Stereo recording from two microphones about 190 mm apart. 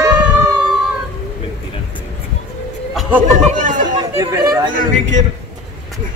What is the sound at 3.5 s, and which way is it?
Speech, 40° right (ahead or behind).